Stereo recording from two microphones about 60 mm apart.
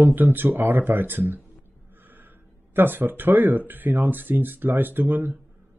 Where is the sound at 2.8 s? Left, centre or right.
Right.